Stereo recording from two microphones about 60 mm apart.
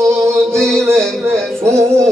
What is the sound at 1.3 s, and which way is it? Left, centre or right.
Music, centre.